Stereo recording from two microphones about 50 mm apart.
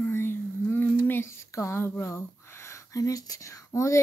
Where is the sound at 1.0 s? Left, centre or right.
Left.